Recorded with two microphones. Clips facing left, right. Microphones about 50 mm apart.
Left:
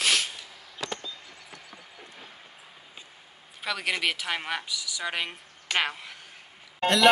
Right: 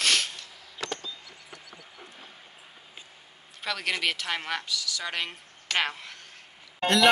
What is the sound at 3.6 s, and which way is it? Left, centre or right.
Speech, centre.